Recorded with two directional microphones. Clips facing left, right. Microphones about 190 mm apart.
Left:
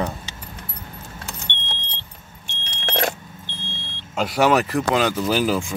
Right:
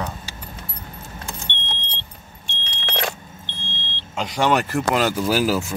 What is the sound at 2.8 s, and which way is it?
Vehicle, 45° left (ahead or behind).